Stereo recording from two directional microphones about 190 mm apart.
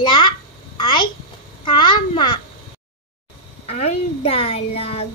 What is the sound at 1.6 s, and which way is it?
Babbling, 25° left (ahead or behind).